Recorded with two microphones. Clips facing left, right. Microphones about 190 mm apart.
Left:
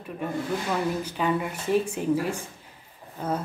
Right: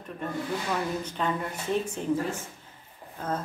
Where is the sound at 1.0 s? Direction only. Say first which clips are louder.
Left 4 dB; 10° left (ahead or behind).